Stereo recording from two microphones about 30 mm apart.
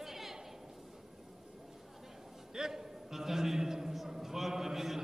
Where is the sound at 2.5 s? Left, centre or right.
Centre.